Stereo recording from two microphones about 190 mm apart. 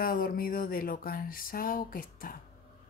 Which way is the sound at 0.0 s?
50° left (ahead or behind).